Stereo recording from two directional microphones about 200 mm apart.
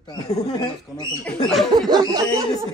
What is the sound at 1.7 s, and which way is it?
Speech, 20° right (ahead or behind).